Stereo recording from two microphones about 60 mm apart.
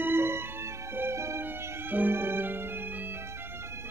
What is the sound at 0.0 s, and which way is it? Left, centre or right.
Music, right.